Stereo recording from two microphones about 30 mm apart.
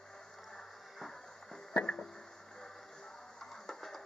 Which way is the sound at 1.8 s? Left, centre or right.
Left.